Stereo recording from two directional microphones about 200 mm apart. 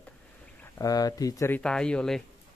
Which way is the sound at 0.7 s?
20° left (ahead or behind).